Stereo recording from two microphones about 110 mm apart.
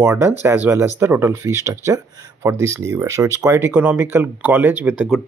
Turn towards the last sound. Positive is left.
turn(degrees=-15)  # may be behind; listen again after turning